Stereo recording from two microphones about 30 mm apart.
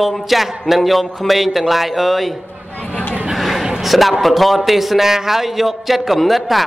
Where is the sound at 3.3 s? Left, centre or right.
Centre.